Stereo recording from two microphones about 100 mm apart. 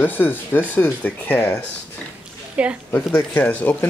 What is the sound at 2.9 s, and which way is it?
Speech, 20° left (ahead or behind).